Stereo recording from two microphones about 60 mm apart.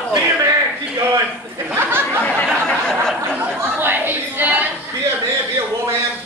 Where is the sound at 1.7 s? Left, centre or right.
Right.